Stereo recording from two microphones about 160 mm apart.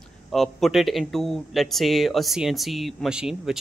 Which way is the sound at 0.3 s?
Centre (ahead or behind).